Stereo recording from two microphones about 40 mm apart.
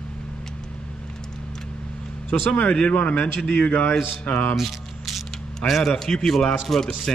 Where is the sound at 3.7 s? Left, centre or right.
Left.